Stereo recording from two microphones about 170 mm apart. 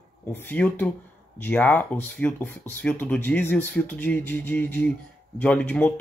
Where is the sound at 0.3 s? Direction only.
10° left (ahead or behind).